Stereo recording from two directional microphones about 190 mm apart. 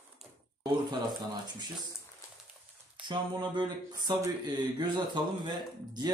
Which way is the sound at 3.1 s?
25° right (ahead or behind).